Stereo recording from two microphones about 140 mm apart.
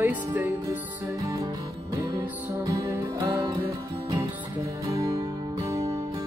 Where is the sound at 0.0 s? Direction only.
15° right (ahead or behind).